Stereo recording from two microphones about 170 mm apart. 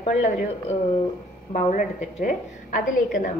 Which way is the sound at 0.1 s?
45° left (ahead or behind).